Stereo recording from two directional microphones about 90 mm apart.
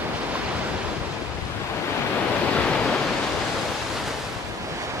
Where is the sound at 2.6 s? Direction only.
10° left (ahead or behind).